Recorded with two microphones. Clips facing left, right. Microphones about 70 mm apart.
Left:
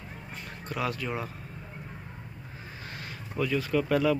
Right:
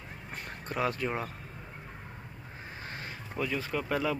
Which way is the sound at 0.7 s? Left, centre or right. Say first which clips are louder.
Right 1 dB; right.